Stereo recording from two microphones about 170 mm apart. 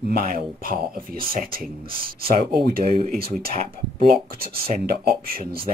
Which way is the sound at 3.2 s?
60° right (ahead or behind).